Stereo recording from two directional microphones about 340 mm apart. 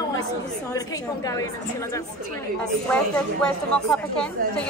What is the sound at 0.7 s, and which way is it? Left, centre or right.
Speech, centre.